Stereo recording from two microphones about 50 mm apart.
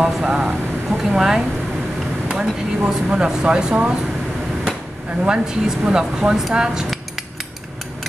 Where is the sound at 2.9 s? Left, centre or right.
Centre.